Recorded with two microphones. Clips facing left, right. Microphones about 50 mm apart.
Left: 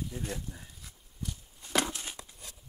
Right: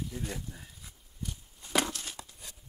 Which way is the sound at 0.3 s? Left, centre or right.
Centre.